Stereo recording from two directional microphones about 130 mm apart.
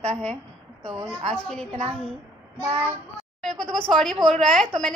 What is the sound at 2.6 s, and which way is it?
Child singing, 45° right (ahead or behind).